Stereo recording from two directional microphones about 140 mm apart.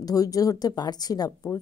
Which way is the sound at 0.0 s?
25° left (ahead or behind).